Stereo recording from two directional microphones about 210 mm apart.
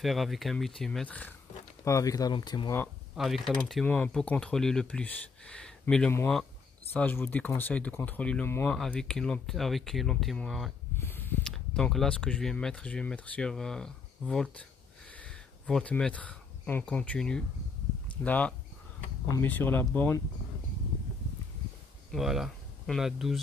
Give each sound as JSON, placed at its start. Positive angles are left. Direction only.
{"t": 0.0, "sound": "speech", "side_deg": 0}
{"t": 2.8, "sound": "speech", "side_deg": 0}
{"t": 22.1, "sound": "speech", "side_deg": 0}